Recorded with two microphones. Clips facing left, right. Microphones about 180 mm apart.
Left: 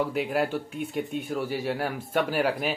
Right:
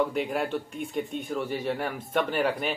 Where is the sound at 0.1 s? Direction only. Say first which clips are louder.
Left 2 dB; 5° left (ahead or behind).